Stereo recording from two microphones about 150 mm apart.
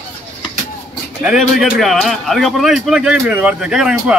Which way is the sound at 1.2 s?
Centre (ahead or behind).